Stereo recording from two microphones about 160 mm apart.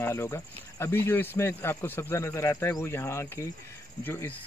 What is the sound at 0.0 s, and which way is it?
Speech, 15° left (ahead or behind).